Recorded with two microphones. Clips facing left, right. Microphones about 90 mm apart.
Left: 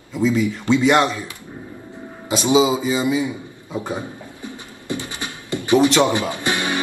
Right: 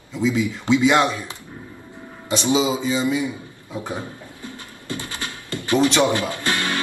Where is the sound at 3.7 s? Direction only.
15° left (ahead or behind).